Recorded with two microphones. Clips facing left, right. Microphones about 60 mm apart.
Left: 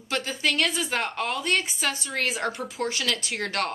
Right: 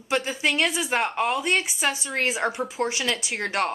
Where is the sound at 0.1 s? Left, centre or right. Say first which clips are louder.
Right 3 dB; centre.